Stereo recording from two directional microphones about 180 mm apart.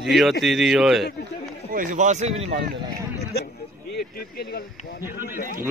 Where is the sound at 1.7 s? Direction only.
40° right (ahead or behind).